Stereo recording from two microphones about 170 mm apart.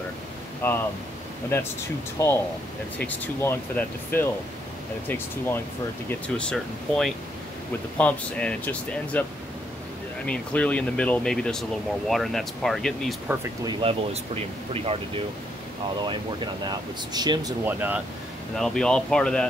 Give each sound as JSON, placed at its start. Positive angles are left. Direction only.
{"t": 0.6, "sound": "speech", "side_deg": 15}
{"t": 2.2, "sound": "speech", "side_deg": 20}
{"t": 10.2, "sound": "speech", "side_deg": 5}
{"t": 13.7, "sound": "speech", "side_deg": -30}
{"t": 16.0, "sound": "speech", "side_deg": -25}
{"t": 17.6, "sound": "speech", "side_deg": -10}
{"t": 18.6, "sound": "speech", "side_deg": 5}